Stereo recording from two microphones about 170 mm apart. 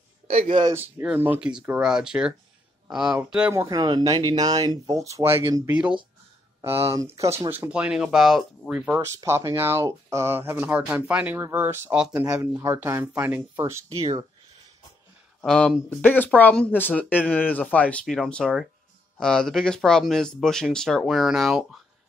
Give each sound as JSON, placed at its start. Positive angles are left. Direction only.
{"t": 0.3, "sound": "speech", "side_deg": -35}
{"t": 0.7, "sound": "speech", "side_deg": -15}
{"t": 3.5, "sound": "speech", "side_deg": -20}
{"t": 15.4, "sound": "speech", "side_deg": 5}